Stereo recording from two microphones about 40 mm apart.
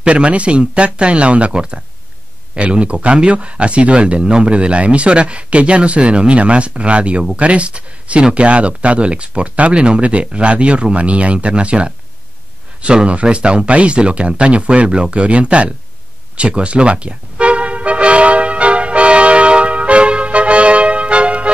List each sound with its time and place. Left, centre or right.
0.0 s speech: right
16.3 s music: right